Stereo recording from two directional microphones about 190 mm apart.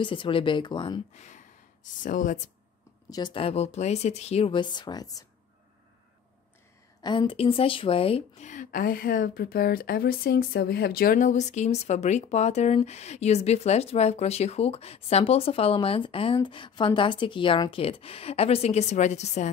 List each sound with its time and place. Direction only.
0.0 s speech: 25° left (ahead or behind)
1.1 s speech: 40° left (ahead or behind)
3.1 s speech: 25° left (ahead or behind)
7.0 s speech: 25° left (ahead or behind)